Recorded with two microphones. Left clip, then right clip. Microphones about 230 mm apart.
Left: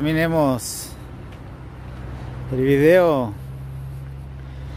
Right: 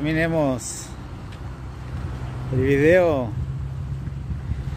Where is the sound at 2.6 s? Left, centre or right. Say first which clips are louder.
Left 2 dB; left.